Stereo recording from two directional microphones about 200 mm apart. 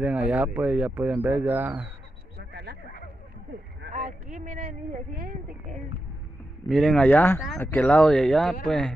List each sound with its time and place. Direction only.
0.0 s speech: 5° right (ahead or behind)
2.5 s a sound: 50° right (ahead or behind)
3.9 s speech: 35° right (ahead or behind)
6.7 s speech: centre (ahead or behind)